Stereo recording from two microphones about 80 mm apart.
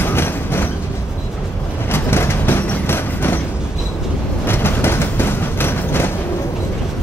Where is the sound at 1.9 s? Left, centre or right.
Left.